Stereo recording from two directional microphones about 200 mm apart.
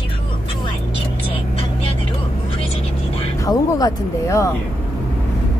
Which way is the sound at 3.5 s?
20° left (ahead or behind).